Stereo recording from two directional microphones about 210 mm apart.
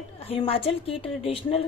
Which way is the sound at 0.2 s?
25° left (ahead or behind).